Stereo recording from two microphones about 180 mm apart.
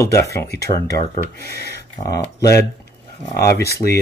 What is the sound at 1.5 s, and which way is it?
Speech, 65° left (ahead or behind).